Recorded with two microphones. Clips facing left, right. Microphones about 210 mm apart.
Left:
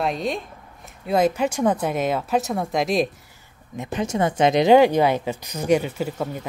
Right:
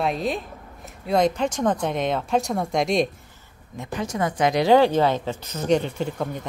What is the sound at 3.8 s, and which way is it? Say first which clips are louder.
Speech: left 3 dB; 20° left (ahead or behind).